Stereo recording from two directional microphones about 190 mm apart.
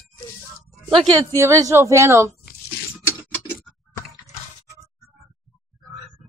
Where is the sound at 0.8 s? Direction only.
25° right (ahead or behind).